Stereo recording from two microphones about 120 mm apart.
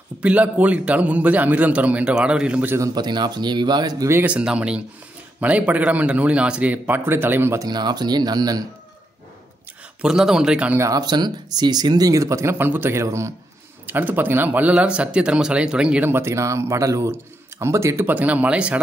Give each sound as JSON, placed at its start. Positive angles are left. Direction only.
{"t": 0.2, "sound": "speech", "side_deg": -10}
{"t": 2.7, "sound": "speech", "side_deg": -30}
{"t": 4.1, "sound": "speech", "side_deg": -15}
{"t": 7.6, "sound": "speech", "side_deg": -35}
{"t": 10.0, "sound": "a man's voice", "side_deg": -5}
{"t": 10.8, "sound": "speech", "side_deg": -30}